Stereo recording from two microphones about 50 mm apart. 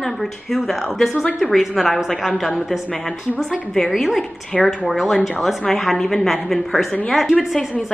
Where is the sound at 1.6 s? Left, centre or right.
Centre.